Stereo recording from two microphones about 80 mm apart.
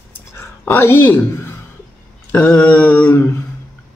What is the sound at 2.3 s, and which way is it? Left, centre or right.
Speech, left.